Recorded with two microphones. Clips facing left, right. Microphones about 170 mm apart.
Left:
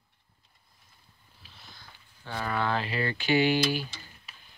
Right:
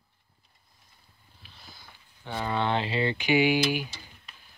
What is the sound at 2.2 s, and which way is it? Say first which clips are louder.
Speech: right 2 dB; 20° right (ahead or behind).